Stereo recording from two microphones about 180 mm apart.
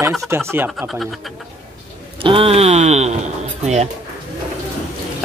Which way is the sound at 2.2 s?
30° right (ahead or behind).